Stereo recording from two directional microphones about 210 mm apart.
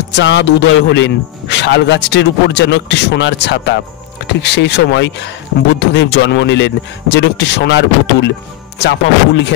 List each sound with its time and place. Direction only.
0.1 s a man's voice: 60° left (ahead or behind)